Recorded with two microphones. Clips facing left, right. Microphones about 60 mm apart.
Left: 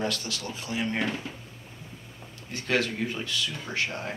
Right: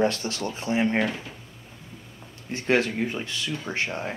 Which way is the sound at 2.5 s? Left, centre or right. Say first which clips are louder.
Right 4 dB; right.